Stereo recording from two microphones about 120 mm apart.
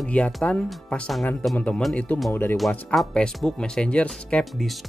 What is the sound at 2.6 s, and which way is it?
Speech, centre (ahead or behind).